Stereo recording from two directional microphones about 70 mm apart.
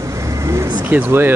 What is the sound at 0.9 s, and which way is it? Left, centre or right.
Speech, right.